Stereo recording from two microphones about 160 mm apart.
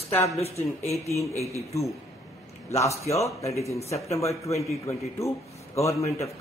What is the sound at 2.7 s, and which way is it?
A man's voice, 20° left (ahead or behind).